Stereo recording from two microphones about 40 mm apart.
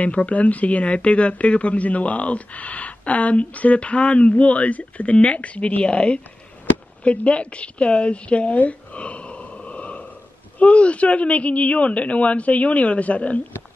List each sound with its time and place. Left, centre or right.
0.0 s a woman's voice: left
8.5 s a sound: left
10.6 s speech: left